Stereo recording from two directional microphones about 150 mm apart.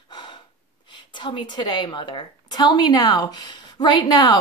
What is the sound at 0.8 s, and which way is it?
A woman's voice, 30° left (ahead or behind).